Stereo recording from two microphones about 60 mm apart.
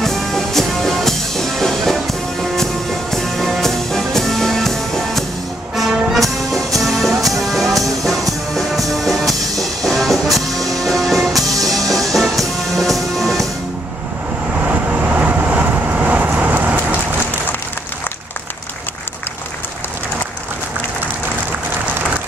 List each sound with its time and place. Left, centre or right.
0.0 s music: centre
14.6 s vehicle: right